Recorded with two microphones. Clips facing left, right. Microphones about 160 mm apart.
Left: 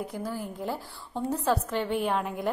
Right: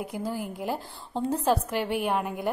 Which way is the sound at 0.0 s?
15° right (ahead or behind).